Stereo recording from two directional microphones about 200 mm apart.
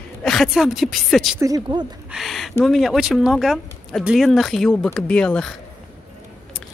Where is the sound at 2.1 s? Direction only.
Centre (ahead or behind).